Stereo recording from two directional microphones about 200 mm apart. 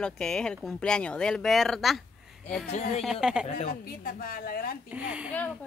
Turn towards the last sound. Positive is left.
turn(degrees=-5)  # may be behind; listen again after turning